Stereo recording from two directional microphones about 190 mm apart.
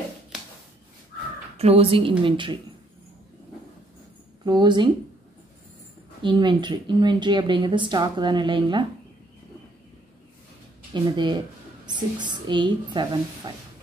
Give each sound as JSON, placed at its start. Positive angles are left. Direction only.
{"t": 1.6, "sound": "speech", "side_deg": -30}
{"t": 4.5, "sound": "speech", "side_deg": -25}
{"t": 6.2, "sound": "speech", "side_deg": -25}
{"t": 10.9, "sound": "speech", "side_deg": -25}